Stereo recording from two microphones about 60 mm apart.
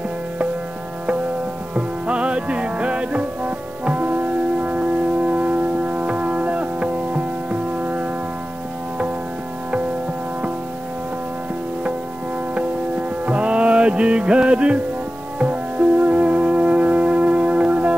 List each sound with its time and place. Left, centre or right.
1.8 s music: centre
13.2 s music: centre